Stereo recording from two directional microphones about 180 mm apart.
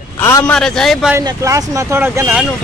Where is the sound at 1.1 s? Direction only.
15° right (ahead or behind).